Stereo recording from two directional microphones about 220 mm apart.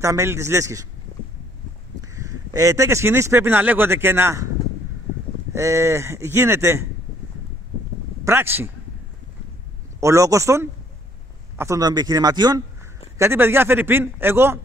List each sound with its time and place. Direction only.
0.0 s speech: 10° right (ahead or behind)
2.1 s speech: 15° right (ahead or behind)
5.5 s speech: 15° right (ahead or behind)
8.3 s speech: 10° right (ahead or behind)
9.9 s speech: 15° right (ahead or behind)